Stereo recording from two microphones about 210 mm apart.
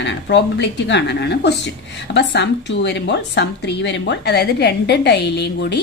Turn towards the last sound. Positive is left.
turn(degrees=55)  # may be behind; listen again after turning